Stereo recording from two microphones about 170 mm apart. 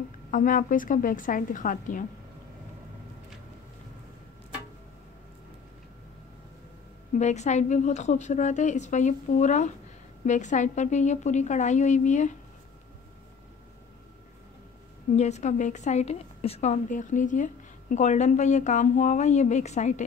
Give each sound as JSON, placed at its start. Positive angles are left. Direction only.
{"t": 0.3, "sound": "a woman's voice", "side_deg": 50}
{"t": 7.2, "sound": "a woman's voice", "side_deg": 45}
{"t": 15.1, "sound": "a woman's voice", "side_deg": 40}